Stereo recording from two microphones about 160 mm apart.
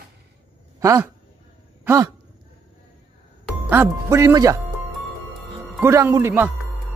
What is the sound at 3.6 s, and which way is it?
Speech, 15° right (ahead or behind).